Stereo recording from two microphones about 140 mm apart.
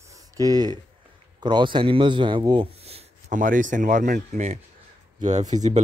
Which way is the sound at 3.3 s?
70° right (ahead or behind).